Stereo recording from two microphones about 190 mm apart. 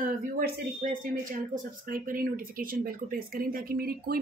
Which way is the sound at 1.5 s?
45° right (ahead or behind).